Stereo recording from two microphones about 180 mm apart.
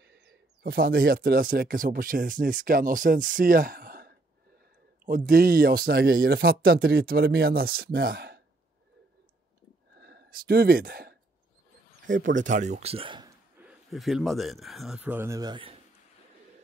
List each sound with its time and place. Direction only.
0.0 s speech: 70° right (ahead or behind)
9.9 s a sound: 60° right (ahead or behind)
12.1 s speech: 90° right
12.4 s speech: 45° right (ahead or behind); by 13.3 s 30° right (ahead or behind)
13.6 s speech: 5° right (ahead or behind); by 15.8 s 30° right (ahead or behind)